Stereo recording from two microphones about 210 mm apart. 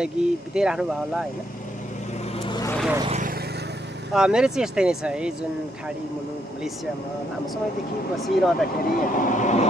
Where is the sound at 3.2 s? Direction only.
45° right (ahead or behind).